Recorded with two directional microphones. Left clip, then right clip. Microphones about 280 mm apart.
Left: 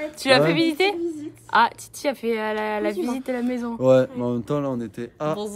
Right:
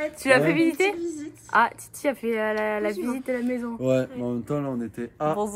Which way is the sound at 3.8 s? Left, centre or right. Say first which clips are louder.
Left 8 dB; centre.